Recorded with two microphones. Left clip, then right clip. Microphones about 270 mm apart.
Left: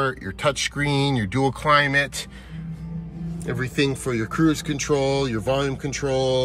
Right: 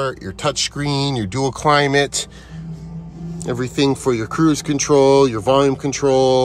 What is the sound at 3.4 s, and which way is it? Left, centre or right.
Speech, centre.